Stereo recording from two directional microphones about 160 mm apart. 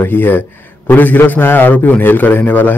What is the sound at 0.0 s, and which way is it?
A man's voice, 10° left (ahead or behind).